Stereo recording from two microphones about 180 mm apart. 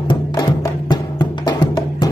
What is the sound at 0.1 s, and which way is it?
Music, 25° left (ahead or behind).